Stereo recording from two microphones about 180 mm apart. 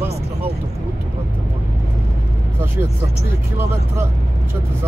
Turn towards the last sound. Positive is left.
turn(degrees=-15)  # may be behind; listen again after turning